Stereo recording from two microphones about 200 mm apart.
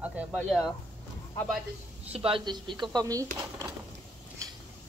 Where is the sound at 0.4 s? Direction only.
Centre (ahead or behind).